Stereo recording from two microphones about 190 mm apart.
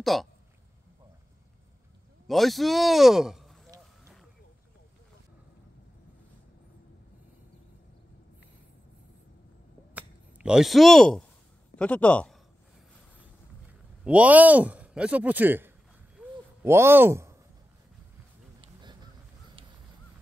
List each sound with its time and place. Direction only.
0.0 s speech: centre (ahead or behind)
2.2 s speech: centre (ahead or behind)
9.9 s a sound: 5° right (ahead or behind)
11.7 s a man's voice: 5° left (ahead or behind)
14.0 s a man's voice: 5° right (ahead or behind)
16.2 s a sound: 15° right (ahead or behind)
18.6 s honk: 25° right (ahead or behind)